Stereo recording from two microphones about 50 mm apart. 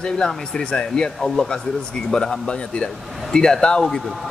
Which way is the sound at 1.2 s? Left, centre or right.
Centre.